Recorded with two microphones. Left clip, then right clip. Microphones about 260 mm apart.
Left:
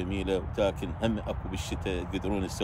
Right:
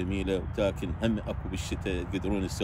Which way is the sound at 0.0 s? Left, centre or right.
Centre.